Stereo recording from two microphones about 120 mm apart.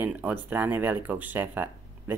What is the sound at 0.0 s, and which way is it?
Speech, 15° right (ahead or behind).